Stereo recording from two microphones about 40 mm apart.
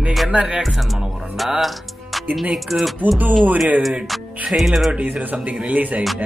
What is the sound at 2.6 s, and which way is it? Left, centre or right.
Speech, centre.